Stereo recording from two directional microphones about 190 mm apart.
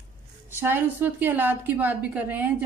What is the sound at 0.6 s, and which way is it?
A woman's voice, 10° right (ahead or behind).